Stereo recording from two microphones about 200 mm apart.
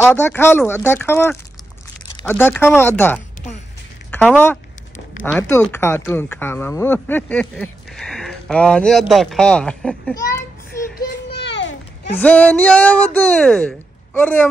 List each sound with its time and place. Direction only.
0.0 s speech: 10° left (ahead or behind)
5.4 s speech: 10° left (ahead or behind)
10.1 s a sound: 15° left (ahead or behind)
11.2 s children playing: 60° left (ahead or behind)
12.2 s speech: 5° left (ahead or behind)